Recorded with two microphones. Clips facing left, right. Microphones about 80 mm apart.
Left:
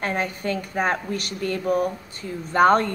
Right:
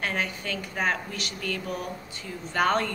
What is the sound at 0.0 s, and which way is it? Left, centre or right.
Speech, left.